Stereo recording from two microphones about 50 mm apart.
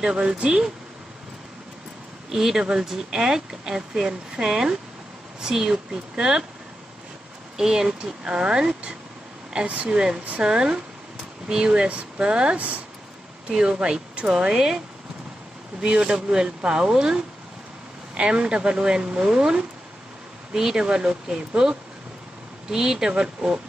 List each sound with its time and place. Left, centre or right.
0.0 s speech: centre
2.2 s speech: centre
7.5 s speech: centre; by 12.8 s right
13.5 s speech: centre
14.5 s speech: centre
15.8 s speech: centre